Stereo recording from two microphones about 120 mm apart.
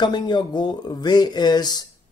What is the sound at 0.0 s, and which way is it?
Speech, 40° left (ahead or behind).